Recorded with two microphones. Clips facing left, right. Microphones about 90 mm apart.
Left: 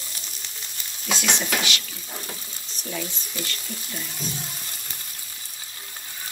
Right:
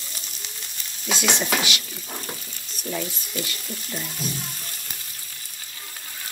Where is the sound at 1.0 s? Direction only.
10° right (ahead or behind).